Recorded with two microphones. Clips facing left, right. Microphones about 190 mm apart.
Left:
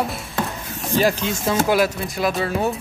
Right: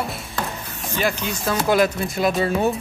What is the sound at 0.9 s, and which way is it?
Speech, 35° left (ahead or behind).